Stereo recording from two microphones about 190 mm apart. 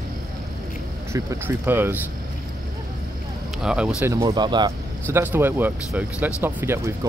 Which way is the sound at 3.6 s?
5° right (ahead or behind).